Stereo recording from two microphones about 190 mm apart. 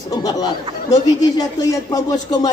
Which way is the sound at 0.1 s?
20° left (ahead or behind).